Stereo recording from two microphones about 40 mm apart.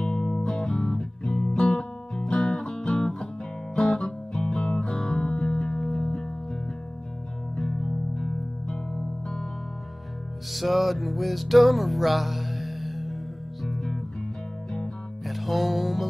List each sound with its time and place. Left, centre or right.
0.0 s music: centre
7.5 s music: centre
8.6 s music: centre
10.5 s music: centre
15.2 s music: centre